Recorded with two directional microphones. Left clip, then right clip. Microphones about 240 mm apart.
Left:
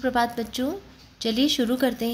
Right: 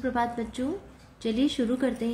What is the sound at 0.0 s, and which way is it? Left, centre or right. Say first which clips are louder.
A woman's voice: left 4 dB; left.